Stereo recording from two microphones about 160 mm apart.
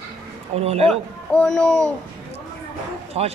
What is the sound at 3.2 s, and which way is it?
Speech, 40° right (ahead or behind).